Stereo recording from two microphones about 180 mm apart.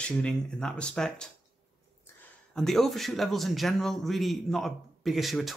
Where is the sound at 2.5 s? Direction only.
Centre (ahead or behind).